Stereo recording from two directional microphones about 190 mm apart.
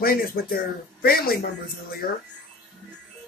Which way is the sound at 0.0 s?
50° left (ahead or behind).